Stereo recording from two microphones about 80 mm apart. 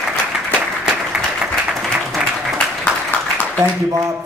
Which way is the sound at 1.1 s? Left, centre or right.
Centre.